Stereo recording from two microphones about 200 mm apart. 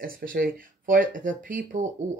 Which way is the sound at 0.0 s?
45° right (ahead or behind).